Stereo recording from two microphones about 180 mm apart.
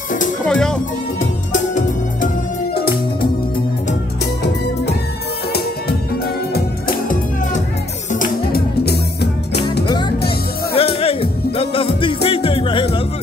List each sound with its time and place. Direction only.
0.5 s speech: 5° left (ahead or behind)
1.5 s music: 45° left (ahead or behind)
6.5 s music: 55° left (ahead or behind)
9.8 s music: 25° left (ahead or behind)